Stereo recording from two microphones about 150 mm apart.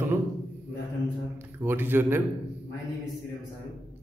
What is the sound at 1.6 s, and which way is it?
Speech, 15° right (ahead or behind).